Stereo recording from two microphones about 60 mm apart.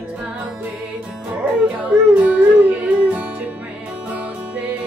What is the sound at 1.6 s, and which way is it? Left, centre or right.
Music, centre.